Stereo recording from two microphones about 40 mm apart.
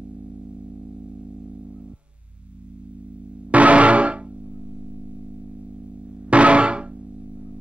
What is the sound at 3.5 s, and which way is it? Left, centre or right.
Music, right.